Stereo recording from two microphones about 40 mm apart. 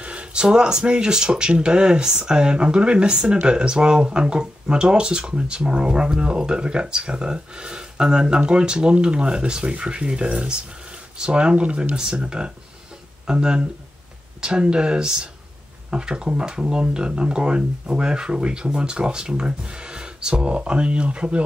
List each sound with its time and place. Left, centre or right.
0.0 s speech: right